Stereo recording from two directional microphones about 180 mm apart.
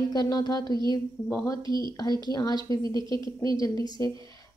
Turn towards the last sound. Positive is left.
turn(degrees=20)  # may be behind; listen again after turning